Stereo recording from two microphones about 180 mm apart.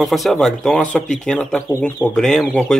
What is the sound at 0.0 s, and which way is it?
Speech, centre (ahead or behind).